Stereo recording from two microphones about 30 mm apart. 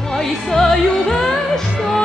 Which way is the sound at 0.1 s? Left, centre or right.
Centre.